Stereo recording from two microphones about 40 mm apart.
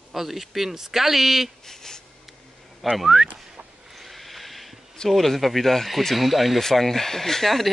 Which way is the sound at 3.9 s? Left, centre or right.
Centre.